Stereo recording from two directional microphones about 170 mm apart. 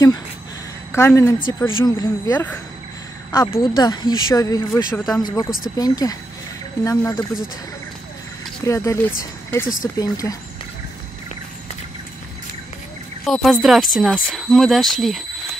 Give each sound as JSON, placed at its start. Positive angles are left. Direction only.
{"t": 0.9, "sound": "speech", "side_deg": 15}
{"t": 4.9, "sound": "speech", "side_deg": 5}
{"t": 5.2, "sound": "speech", "side_deg": 25}
{"t": 8.6, "sound": "speech", "side_deg": 20}
{"t": 13.2, "sound": "speech", "side_deg": 0}